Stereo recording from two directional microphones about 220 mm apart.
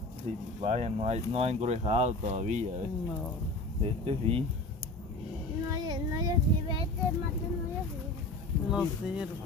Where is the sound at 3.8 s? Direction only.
25° right (ahead or behind).